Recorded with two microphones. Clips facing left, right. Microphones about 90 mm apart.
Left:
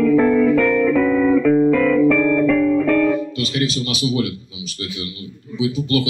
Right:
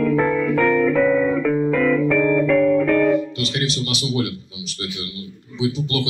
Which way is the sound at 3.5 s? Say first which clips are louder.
Left 3 dB; 30° right (ahead or behind).